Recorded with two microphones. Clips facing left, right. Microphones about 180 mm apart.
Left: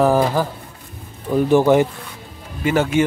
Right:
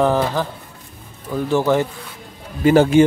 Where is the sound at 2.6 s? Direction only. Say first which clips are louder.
Right 6 dB; 35° right (ahead or behind).